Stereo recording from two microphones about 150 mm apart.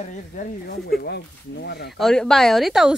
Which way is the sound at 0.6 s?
90° left.